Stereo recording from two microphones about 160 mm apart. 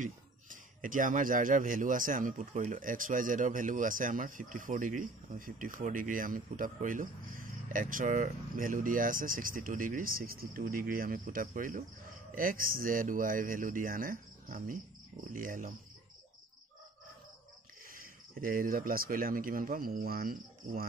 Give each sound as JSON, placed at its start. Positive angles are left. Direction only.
{"t": 0.0, "sound": "speech", "side_deg": -55}
{"t": 17.9, "sound": "speech", "side_deg": -60}